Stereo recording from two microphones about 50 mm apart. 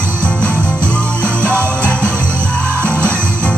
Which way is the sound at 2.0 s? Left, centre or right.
Right.